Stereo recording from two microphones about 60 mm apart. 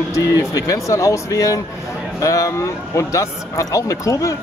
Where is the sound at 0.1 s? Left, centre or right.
Left.